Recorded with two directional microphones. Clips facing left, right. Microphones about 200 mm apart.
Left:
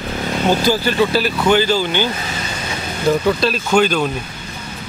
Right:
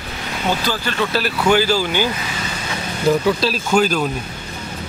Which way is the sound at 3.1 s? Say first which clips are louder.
Left 1 dB; centre (ahead or behind).